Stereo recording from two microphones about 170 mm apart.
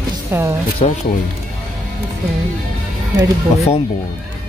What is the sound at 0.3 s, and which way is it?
Speech, 15° right (ahead or behind).